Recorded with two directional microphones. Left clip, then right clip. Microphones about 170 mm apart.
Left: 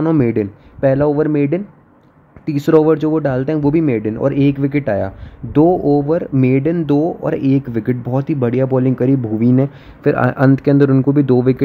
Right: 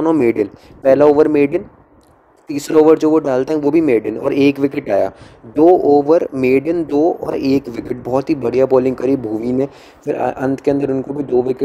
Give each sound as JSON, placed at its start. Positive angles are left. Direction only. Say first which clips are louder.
{"t": 0.2, "sound": "speech", "louder": "right 2 dB", "side_deg": -30}
{"t": 5.6, "sound": "speech", "louder": "right 3 dB", "side_deg": -20}